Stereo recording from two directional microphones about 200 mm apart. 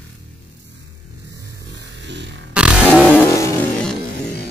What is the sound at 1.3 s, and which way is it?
Music, 15° right (ahead or behind).